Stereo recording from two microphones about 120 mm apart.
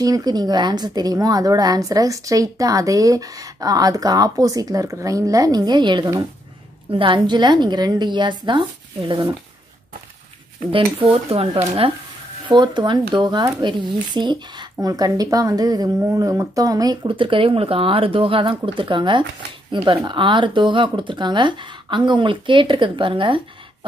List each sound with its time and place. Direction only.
0.0 s a woman's voice: 30° right (ahead or behind)
10.7 s speech: 50° right (ahead or behind)
12.4 s a woman's voice: 40° right (ahead or behind)